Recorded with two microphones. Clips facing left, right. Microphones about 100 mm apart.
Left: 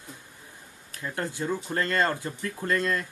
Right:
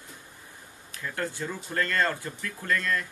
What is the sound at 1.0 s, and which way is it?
Speech, 20° left (ahead or behind).